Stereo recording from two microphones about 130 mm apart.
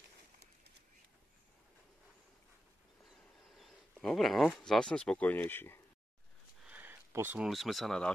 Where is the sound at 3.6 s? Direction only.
Centre (ahead or behind).